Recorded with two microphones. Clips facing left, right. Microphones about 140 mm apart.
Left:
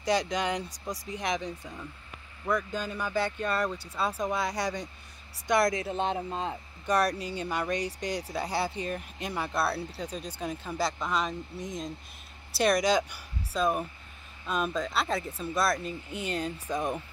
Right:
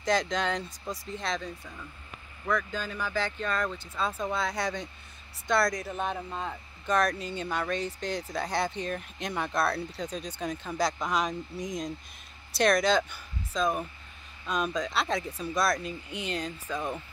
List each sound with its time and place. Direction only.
0.0 s speech: 10° left (ahead or behind)
6.9 s speech: 10° left (ahead or behind)